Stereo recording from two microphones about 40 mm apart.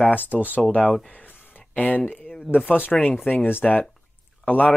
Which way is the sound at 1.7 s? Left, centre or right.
Left.